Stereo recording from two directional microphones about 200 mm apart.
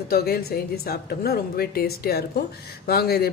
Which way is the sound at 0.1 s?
50° left (ahead or behind).